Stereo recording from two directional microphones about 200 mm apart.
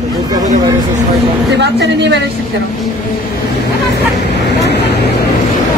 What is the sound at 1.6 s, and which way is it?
Speech, 60° right (ahead or behind).